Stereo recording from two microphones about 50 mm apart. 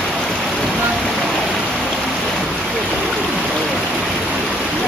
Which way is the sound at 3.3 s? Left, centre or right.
Centre.